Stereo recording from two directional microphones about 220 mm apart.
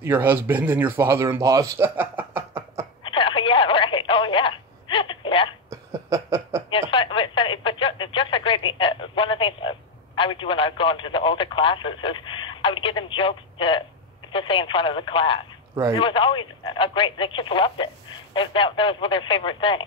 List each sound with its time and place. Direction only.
0.0 s speech: 10° right (ahead or behind)
2.5 s a sound: 25° right (ahead or behind)
3.0 s telephone: 20° left (ahead or behind)
5.7 s a sound: 15° right (ahead or behind)
6.7 s radio: 25° left (ahead or behind)
14.3 s speech: 25° left (ahead or behind)
15.7 s speech: 15° right (ahead or behind)
16.0 s speech: 20° left (ahead or behind)